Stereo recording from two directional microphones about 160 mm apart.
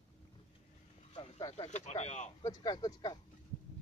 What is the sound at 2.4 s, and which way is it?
Speech, 25° left (ahead or behind).